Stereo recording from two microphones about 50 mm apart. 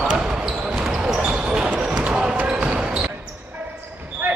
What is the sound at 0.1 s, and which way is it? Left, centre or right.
Basketball bounce, centre.